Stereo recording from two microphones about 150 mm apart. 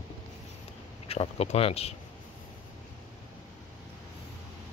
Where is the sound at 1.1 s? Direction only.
40° left (ahead or behind).